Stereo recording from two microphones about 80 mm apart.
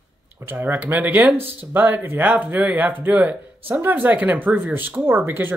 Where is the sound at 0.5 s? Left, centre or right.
Right.